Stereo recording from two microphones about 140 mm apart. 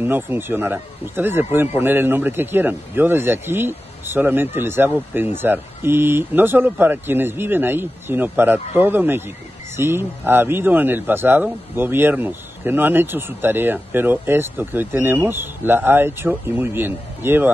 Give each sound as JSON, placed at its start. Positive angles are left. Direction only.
{"t": 0.0, "sound": "speech", "side_deg": -15}